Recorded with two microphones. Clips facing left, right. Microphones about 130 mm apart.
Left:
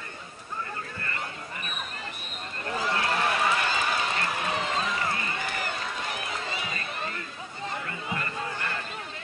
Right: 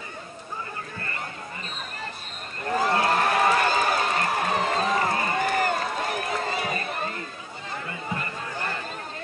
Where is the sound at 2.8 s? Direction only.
45° right (ahead or behind).